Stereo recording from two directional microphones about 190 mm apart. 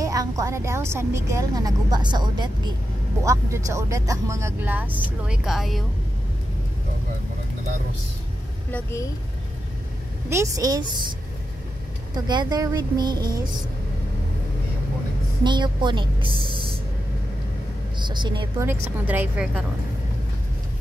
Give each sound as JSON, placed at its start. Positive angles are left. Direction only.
{"t": 0.0, "sound": "a woman's voice", "side_deg": -20}
{"t": 10.3, "sound": "speech", "side_deg": -15}
{"t": 12.3, "sound": "a woman's voice", "side_deg": -20}
{"t": 15.4, "sound": "a woman's voice", "side_deg": -25}
{"t": 16.3, "sound": "speech", "side_deg": 25}
{"t": 17.9, "sound": "a woman's voice", "side_deg": -25}
{"t": 18.7, "sound": "speech", "side_deg": -10}